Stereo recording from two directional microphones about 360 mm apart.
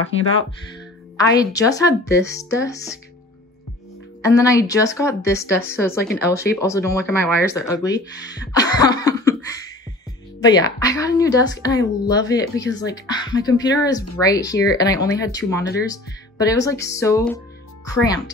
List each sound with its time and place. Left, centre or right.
1.1 s speech: centre
4.2 s speech: centre
10.4 s speech: centre